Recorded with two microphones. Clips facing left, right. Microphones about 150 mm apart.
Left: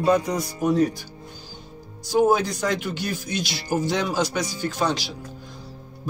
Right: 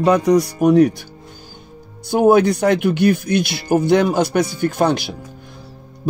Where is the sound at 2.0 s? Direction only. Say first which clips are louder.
Right 7 dB; 60° right (ahead or behind).